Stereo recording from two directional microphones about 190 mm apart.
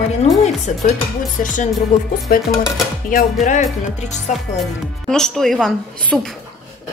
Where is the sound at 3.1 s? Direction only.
40° left (ahead or behind).